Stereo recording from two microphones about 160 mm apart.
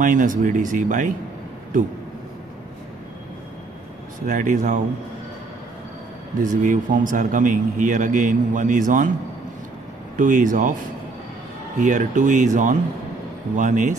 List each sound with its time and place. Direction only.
0.0 s speech: 55° right (ahead or behind)
4.3 s a man's voice: 50° right (ahead or behind)
6.4 s a man's voice: 55° right (ahead or behind)
10.1 s speech: 55° right (ahead or behind)
11.8 s a man's voice: 50° right (ahead or behind)